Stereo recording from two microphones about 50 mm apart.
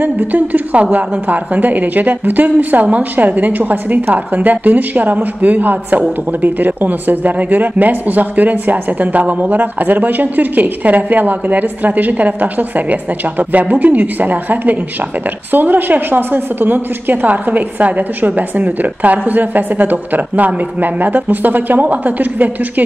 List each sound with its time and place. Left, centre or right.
0.0 s a woman's voice: right